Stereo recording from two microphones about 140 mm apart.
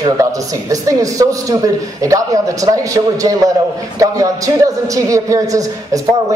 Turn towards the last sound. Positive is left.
turn(degrees=-25)  # may be behind; listen again after turning